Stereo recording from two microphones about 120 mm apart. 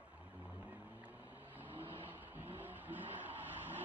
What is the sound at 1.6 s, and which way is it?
Vehicle, 15° right (ahead or behind).